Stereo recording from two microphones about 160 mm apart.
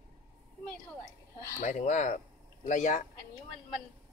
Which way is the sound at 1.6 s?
50° left (ahead or behind).